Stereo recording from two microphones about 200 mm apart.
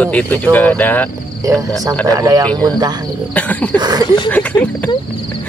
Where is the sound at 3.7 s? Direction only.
20° right (ahead or behind).